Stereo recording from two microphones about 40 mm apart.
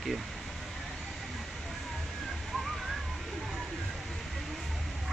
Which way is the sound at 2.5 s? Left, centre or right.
Centre.